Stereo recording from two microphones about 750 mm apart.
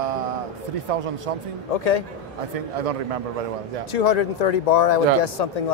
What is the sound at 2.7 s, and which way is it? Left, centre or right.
Speech, right.